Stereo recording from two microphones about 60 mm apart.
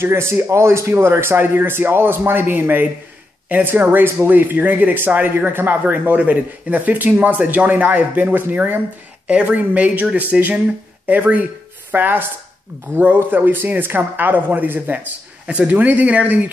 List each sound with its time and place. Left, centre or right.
0.0 s speech: right